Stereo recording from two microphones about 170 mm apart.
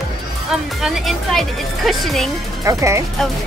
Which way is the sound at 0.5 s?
Centre (ahead or behind).